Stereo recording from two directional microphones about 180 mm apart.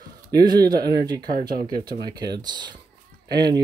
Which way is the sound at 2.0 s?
25° right (ahead or behind).